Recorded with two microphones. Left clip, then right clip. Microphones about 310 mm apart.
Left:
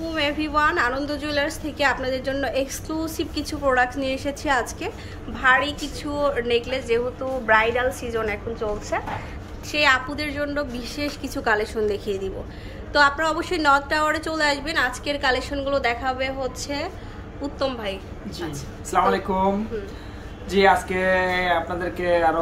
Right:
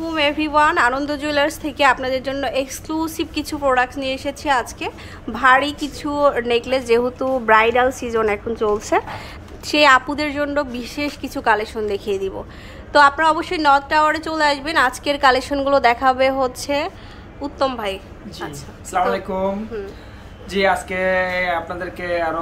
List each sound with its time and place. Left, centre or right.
0.0 s a woman's voice: centre
5.3 s a woman's voice: centre
20.4 s speech: centre